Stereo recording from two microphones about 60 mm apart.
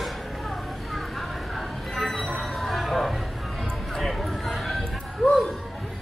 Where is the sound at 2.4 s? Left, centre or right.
Centre.